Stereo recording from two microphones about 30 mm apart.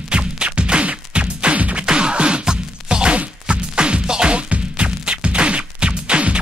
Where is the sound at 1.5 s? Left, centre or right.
Right.